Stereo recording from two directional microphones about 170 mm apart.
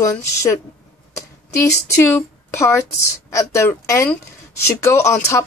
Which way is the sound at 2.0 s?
15° left (ahead or behind).